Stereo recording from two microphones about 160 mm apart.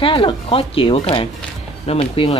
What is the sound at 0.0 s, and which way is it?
Speech, 35° left (ahead or behind).